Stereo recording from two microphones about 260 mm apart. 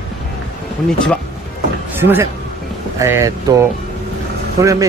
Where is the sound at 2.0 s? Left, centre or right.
Centre.